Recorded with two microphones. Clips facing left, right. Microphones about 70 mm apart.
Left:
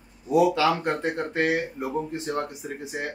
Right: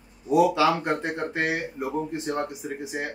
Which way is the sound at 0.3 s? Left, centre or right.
Centre.